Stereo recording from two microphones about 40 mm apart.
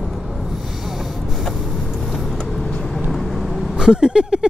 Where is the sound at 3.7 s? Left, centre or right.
Centre.